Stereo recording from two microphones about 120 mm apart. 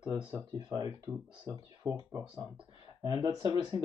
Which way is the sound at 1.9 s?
20° right (ahead or behind).